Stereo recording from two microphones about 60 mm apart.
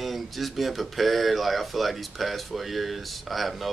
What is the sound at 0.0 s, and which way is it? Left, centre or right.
Speech, centre.